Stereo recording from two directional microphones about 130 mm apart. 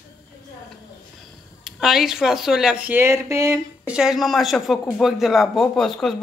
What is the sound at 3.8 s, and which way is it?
Speech, 5° right (ahead or behind).